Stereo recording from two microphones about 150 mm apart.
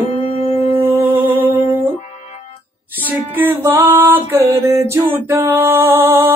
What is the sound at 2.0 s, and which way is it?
Music, 50° left (ahead or behind).